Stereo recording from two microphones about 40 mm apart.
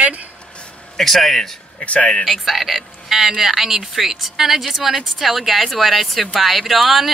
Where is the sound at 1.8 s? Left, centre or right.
Left.